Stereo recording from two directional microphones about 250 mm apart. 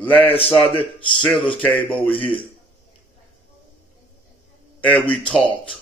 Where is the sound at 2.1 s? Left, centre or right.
Left.